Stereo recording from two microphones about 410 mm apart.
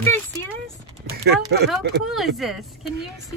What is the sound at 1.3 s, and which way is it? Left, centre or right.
Speech, right.